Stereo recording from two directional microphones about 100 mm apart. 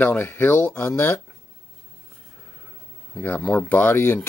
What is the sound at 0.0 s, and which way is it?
Speech, 20° left (ahead or behind).